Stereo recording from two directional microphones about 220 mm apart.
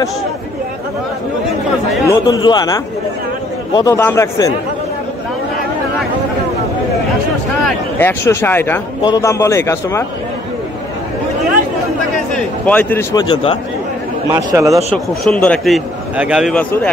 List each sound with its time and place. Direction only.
2.0 s speech: 15° left (ahead or behind)
7.6 s speech: 10° left (ahead or behind)
12.6 s speech: 10° left (ahead or behind)
14.3 s a man's voice: 15° right (ahead or behind)
15.2 s a man's voice: 5° left (ahead or behind)